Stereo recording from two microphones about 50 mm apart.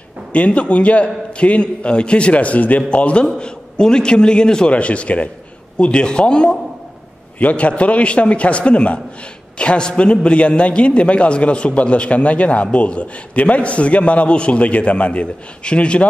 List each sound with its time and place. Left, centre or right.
0.3 s a man's voice: left
7.3 s a man's voice: left